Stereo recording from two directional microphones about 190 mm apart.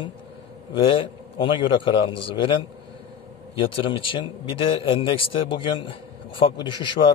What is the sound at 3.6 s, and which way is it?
A man's voice, 30° left (ahead or behind).